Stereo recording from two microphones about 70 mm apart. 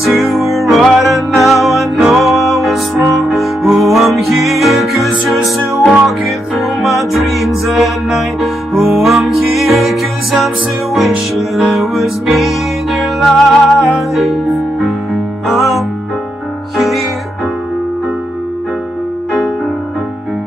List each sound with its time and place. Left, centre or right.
0.0 s music: centre